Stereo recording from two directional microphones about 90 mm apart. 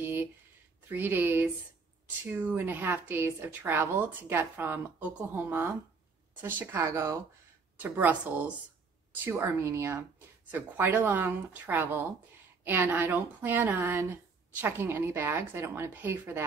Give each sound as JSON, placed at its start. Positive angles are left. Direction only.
{"t": 0.0, "sound": "a sound", "side_deg": -25}
{"t": 0.8, "sound": "speech", "side_deg": -25}
{"t": 6.7, "sound": "speech", "side_deg": -25}
{"t": 7.8, "sound": "speech", "side_deg": -20}
{"t": 9.2, "sound": "speech", "side_deg": -30}